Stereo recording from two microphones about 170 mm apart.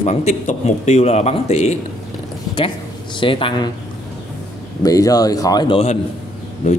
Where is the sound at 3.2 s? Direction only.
30° left (ahead or behind).